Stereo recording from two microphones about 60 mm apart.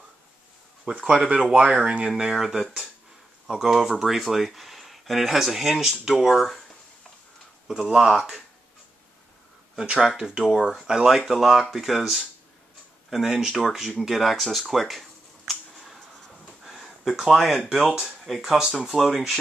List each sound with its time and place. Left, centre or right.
0.8 s speech: centre
7.6 s speech: centre
9.8 s speech: centre
16.4 s a sound: centre
18.2 s speech: centre